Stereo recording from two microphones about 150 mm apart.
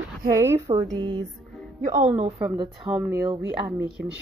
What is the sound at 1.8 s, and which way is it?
Speech, 55° right (ahead or behind).